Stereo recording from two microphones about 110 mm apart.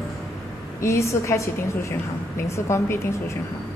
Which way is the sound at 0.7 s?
25° left (ahead or behind).